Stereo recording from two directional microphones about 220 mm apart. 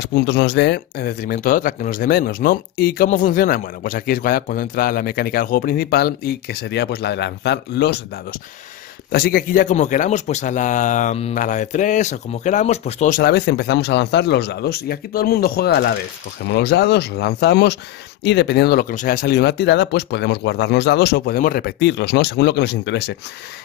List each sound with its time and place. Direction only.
0.0 s a man's voice: 50° left (ahead or behind)